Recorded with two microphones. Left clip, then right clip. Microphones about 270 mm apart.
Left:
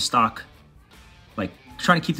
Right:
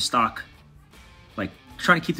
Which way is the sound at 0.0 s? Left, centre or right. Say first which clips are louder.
Left 2 dB; centre.